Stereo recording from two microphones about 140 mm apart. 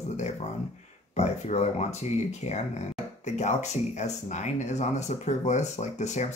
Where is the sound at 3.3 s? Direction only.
55° left (ahead or behind).